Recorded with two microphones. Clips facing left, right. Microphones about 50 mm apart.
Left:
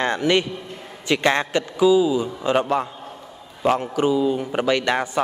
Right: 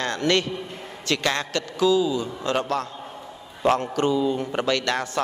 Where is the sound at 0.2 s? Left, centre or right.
Centre.